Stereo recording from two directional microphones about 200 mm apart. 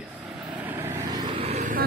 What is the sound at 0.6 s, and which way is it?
Vehicle, 10° right (ahead or behind).